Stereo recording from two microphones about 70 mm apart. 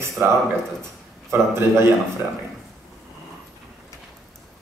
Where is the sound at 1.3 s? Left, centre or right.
Right.